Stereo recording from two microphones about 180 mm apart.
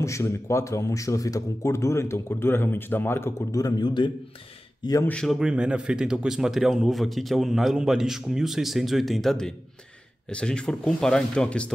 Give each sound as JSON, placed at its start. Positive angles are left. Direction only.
{"t": 0.0, "sound": "speech", "side_deg": 15}
{"t": 5.0, "sound": "speech", "side_deg": 5}